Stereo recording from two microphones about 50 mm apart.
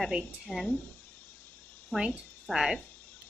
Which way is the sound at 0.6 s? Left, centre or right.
Left.